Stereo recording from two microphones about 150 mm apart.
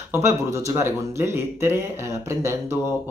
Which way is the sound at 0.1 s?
20° right (ahead or behind).